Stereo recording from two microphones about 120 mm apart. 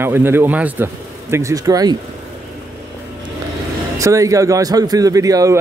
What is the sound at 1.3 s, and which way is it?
Speech, 30° right (ahead or behind).